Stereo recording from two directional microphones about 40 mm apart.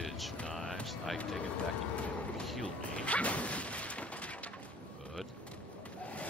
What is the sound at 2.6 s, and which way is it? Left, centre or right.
Speech, left.